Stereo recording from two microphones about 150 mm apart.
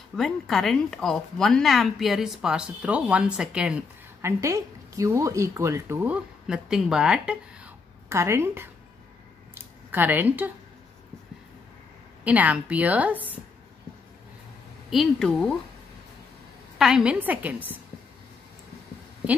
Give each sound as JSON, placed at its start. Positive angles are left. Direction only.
{"t": 0.1, "sound": "speech", "side_deg": 0}
{"t": 4.3, "sound": "speech", "side_deg": -20}
{"t": 6.4, "sound": "speech", "side_deg": -5}
{"t": 8.1, "sound": "a woman's voice", "side_deg": -15}
{"t": 9.8, "sound": "a woman's voice", "side_deg": -10}
{"t": 12.3, "sound": "a woman's voice", "side_deg": -10}
{"t": 14.9, "sound": "speech", "side_deg": 0}
{"t": 16.7, "sound": "a woman's voice", "side_deg": -5}